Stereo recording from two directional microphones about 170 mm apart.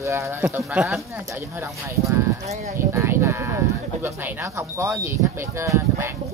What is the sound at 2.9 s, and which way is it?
Speech, 15° right (ahead or behind).